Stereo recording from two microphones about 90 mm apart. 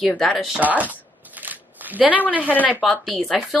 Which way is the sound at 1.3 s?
20° right (ahead or behind).